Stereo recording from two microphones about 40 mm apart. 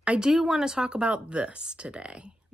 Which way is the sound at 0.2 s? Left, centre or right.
Centre.